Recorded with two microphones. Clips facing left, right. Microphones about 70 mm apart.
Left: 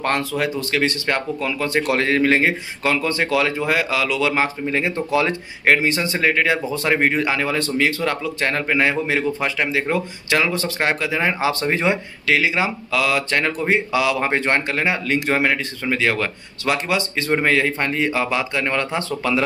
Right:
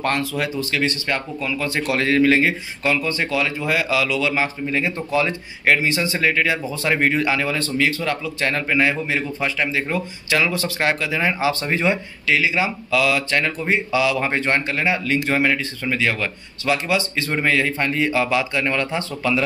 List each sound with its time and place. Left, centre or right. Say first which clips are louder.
0.2 s speech: left 1 dB; left
6.8 s speech: right 2 dB; left
11.9 s speech: left 1 dB; left